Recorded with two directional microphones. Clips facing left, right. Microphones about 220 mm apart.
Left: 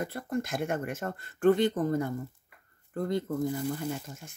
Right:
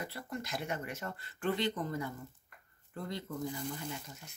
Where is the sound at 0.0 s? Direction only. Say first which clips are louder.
Left 9 dB; 50° left (ahead or behind).